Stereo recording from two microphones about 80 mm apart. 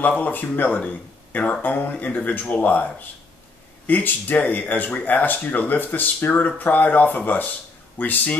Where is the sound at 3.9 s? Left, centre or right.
Left.